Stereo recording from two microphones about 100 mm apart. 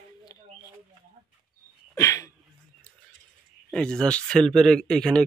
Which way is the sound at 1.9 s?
30° left (ahead or behind).